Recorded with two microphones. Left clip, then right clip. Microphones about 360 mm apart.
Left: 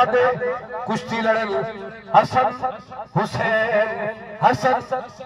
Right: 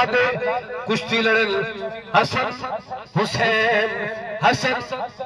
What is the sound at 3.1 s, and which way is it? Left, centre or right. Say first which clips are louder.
A man's voice: right 1 dB; centre.